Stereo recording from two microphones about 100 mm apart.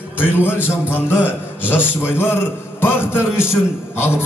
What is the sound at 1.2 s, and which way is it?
Speech, 20° left (ahead or behind).